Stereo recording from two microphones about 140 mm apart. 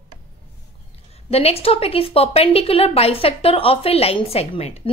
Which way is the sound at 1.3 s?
45° left (ahead or behind).